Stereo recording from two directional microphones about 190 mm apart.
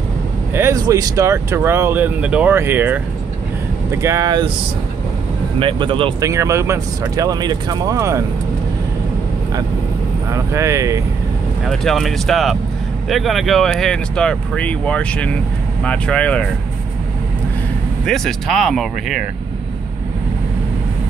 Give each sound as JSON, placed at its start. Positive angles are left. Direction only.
{"t": 0.6, "sound": "speech", "side_deg": -15}
{"t": 5.6, "sound": "speech", "side_deg": -25}
{"t": 6.3, "sound": "speech", "side_deg": -15}
{"t": 10.3, "sound": "speech", "side_deg": -15}
{"t": 11.6, "sound": "speech", "side_deg": 0}
{"t": 18.0, "sound": "speech", "side_deg": 0}